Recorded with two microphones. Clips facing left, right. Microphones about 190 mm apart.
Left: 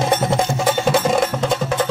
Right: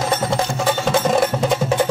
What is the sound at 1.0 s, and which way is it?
Music, 5° right (ahead or behind).